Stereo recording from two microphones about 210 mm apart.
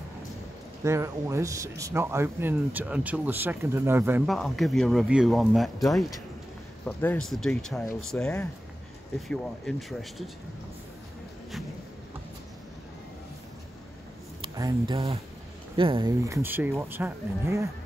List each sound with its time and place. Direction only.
0.8 s speech: 15° right (ahead or behind)
4.3 s speech: centre (ahead or behind)
14.4 s speech: 25° right (ahead or behind)